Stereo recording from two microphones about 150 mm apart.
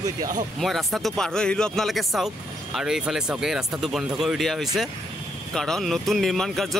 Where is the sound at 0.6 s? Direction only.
Centre (ahead or behind).